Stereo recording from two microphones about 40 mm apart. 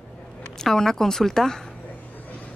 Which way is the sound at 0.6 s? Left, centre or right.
Centre.